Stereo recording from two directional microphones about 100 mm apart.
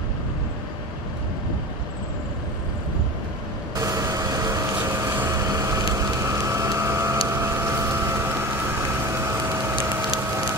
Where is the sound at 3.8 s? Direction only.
35° right (ahead or behind).